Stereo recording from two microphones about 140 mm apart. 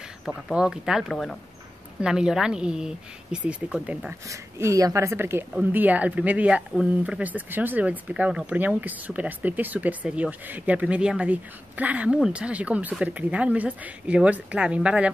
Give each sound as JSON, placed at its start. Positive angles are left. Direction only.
{"t": 0.2, "sound": "speech", "side_deg": -5}
{"t": 4.3, "sound": "speech", "side_deg": -20}